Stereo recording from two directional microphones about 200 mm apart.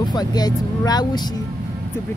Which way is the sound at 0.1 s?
20° left (ahead or behind).